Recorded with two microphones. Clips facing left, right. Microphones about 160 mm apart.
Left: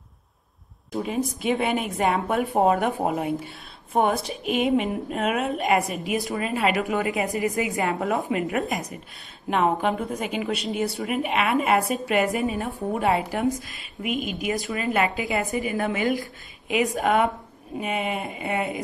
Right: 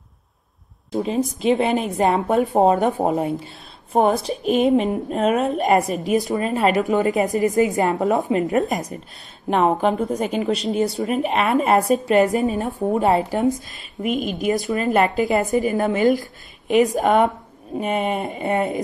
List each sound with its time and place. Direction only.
1.0 s a woman's voice: 30° right (ahead or behind)
14.2 s a woman's voice: 40° right (ahead or behind)
17.7 s speech: 40° right (ahead or behind)